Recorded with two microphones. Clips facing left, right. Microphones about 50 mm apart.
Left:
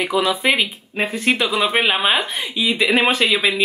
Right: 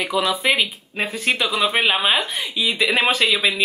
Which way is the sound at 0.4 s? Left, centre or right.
Centre.